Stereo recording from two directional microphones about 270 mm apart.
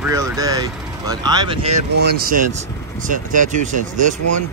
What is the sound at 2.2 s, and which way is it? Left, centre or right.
Speech, right.